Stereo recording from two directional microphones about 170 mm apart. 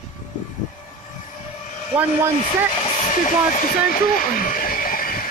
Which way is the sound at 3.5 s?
50° left (ahead or behind).